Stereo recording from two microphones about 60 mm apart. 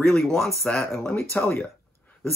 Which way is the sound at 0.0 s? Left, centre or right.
Centre.